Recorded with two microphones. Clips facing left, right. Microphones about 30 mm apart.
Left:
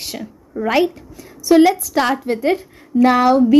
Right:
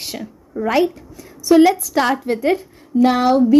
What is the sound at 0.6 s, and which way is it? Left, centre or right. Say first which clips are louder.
Speech: even; centre.